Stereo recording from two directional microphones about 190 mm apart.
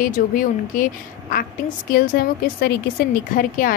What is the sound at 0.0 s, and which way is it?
Speech, 45° left (ahead or behind).